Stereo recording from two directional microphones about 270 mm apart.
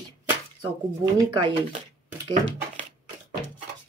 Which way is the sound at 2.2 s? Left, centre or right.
Centre.